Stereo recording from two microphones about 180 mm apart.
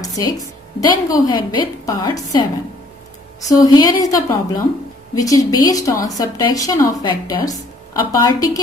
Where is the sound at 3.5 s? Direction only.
20° left (ahead or behind).